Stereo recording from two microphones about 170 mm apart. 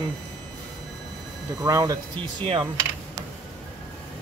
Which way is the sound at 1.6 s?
20° right (ahead or behind).